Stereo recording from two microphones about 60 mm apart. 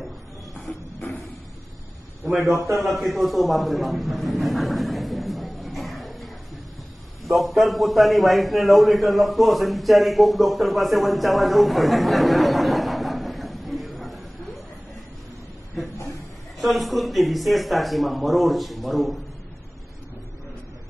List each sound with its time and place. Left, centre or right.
2.4 s a man's voice: right
2.8 s a sound: centre
7.2 s a man's voice: centre
16.6 s speech: centre